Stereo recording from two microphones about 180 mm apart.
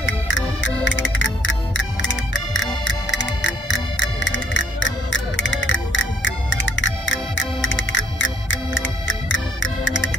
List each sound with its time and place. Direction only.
0.0 s music: 90° left